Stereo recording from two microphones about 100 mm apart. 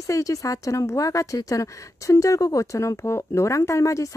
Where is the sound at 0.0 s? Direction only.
35° left (ahead or behind).